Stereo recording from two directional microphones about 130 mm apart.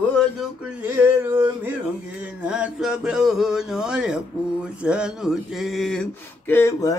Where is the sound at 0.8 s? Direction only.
15° right (ahead or behind).